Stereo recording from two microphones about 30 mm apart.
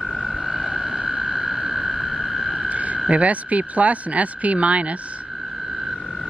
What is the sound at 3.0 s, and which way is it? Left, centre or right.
Speech, right.